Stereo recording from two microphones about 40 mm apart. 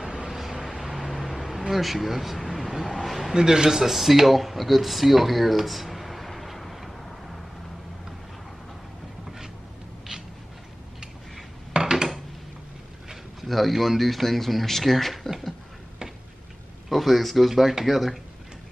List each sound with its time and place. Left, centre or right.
0.0 s vehicle: centre
1.7 s a sound: centre
3.3 s speech: centre
11.7 s a sound: centre
13.5 s speech: centre
16.9 s speech: centre